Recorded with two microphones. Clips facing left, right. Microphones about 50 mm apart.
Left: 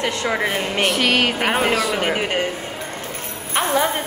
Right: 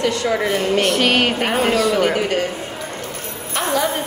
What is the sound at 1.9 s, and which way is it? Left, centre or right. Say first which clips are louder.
Speech: right 3 dB; left.